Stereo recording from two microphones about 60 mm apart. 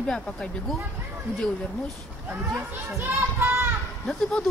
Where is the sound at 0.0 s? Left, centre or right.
Centre.